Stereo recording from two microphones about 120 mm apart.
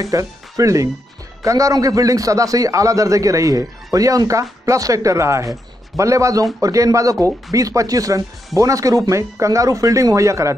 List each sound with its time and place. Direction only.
0.0 s a man's voice: 30° right (ahead or behind)